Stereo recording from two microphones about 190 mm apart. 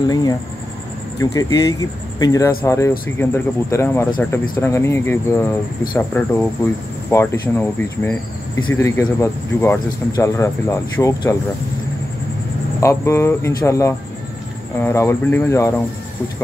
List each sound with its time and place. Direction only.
0.1 s speech: 20° left (ahead or behind)
12.8 s speech: 15° left (ahead or behind)